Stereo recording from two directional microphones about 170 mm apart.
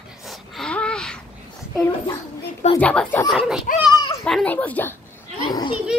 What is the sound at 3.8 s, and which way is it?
Children playing, 25° left (ahead or behind).